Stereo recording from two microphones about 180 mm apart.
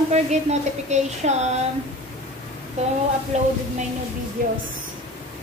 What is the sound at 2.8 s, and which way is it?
Speech, 35° right (ahead or behind).